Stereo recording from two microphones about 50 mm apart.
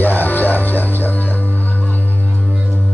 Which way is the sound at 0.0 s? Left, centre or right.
Left.